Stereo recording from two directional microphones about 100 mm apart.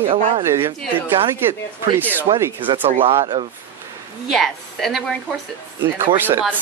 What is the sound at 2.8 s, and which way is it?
Speech, 70° right (ahead or behind).